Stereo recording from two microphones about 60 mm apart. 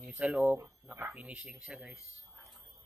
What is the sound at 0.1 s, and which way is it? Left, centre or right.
A man's voice, right.